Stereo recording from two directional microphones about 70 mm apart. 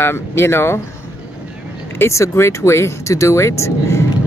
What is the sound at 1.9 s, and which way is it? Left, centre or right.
Speech, left.